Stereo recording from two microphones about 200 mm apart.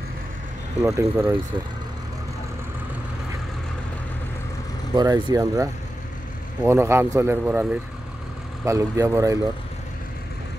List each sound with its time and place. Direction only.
0.8 s speech: 15° right (ahead or behind)
4.9 s speech: 15° right (ahead or behind)
8.6 s speech: 15° right (ahead or behind)